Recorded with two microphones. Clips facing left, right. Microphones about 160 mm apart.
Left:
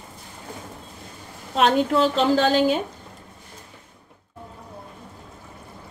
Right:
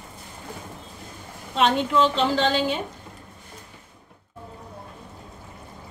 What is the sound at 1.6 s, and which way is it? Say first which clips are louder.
A woman's voice: left 2 dB; 40° left (ahead or behind).